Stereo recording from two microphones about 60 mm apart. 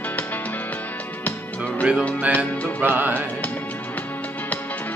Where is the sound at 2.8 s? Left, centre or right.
Right.